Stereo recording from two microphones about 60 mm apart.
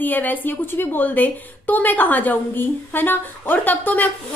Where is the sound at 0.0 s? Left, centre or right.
Left.